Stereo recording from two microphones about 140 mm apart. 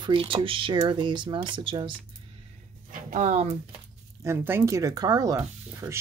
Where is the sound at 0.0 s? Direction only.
40° right (ahead or behind).